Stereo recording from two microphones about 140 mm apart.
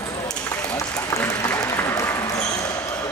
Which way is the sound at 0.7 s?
20° left (ahead or behind).